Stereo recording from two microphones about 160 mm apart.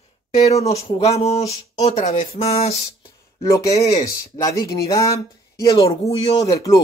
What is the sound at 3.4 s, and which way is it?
Speech, 20° left (ahead or behind).